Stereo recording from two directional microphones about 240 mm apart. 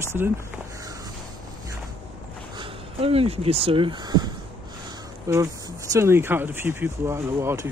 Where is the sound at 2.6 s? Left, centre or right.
Right.